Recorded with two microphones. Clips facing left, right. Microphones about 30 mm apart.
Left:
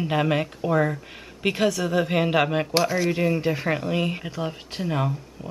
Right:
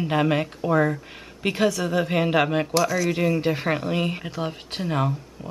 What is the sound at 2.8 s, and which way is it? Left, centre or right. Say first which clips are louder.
Speech: even; left.